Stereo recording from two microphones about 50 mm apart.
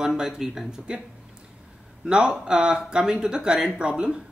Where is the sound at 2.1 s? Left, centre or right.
Centre.